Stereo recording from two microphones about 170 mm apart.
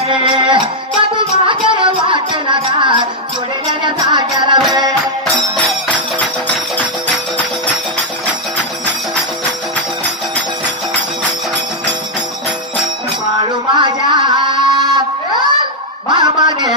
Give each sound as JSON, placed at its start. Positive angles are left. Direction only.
{"t": 0.1, "sound": "music", "side_deg": -30}
{"t": 5.2, "sound": "music", "side_deg": 5}
{"t": 13.7, "sound": "a sound", "side_deg": -25}